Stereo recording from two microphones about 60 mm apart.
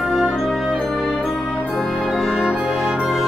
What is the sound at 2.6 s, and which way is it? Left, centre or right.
Music, centre.